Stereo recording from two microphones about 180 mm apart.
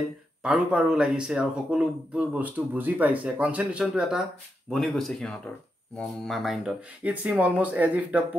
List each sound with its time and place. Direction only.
0.4 s speech: 5° right (ahead or behind)